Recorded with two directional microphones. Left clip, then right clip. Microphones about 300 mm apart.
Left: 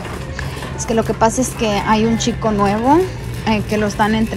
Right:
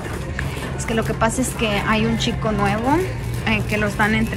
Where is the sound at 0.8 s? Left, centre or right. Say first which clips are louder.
Left 6 dB; centre.